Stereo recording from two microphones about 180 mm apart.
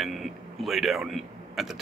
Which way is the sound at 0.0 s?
Centre (ahead or behind).